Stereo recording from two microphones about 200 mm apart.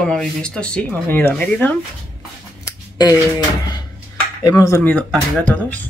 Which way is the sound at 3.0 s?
20° left (ahead or behind).